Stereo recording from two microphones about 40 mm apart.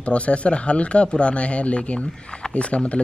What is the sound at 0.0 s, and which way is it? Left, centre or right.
Speech, left.